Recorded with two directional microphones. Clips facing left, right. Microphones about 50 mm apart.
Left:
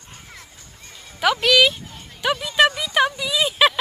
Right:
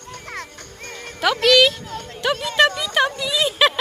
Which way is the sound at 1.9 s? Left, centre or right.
Right.